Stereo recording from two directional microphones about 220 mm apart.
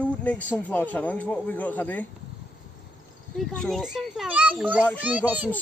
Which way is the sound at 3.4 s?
5° left (ahead or behind).